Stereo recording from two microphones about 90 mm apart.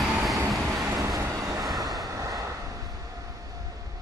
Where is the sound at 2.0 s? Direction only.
40° right (ahead or behind).